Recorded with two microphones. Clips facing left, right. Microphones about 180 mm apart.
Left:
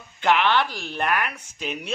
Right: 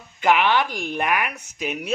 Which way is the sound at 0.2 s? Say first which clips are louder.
Right 2 dB; 10° right (ahead or behind).